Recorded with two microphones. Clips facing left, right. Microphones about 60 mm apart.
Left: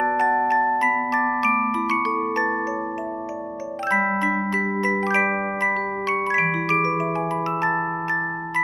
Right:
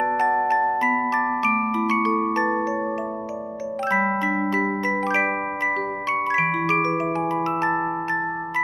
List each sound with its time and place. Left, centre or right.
0.0 s glockenspiel: centre
5.0 s glockenspiel: centre
6.3 s marimba: centre
6.9 s glockenspiel: centre